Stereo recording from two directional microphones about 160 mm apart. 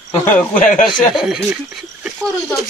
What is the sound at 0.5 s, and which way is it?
Speech, 55° left (ahead or behind).